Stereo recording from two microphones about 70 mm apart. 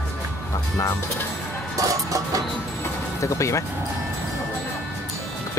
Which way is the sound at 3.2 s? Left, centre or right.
Left.